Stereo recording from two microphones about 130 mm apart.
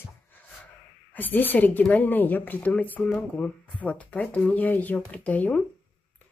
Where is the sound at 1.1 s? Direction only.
15° left (ahead or behind).